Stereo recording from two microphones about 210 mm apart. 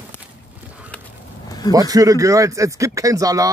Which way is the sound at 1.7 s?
15° right (ahead or behind).